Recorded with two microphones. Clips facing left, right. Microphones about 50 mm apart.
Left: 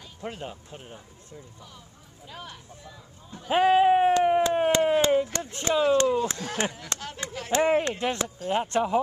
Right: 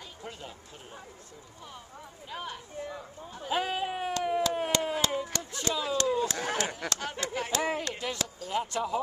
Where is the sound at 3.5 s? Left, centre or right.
Left.